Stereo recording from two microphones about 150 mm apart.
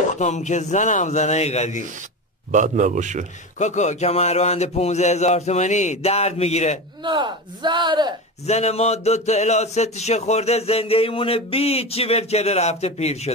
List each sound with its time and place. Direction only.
0.1 s a man's voice: 50° left (ahead or behind)
2.5 s a man's voice: 55° right (ahead or behind)
3.5 s a man's voice: 50° left (ahead or behind)
7.0 s speech: 30° right (ahead or behind)
8.5 s a man's voice: 45° left (ahead or behind)